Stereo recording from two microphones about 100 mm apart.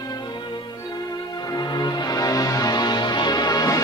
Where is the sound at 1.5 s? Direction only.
45° left (ahead or behind).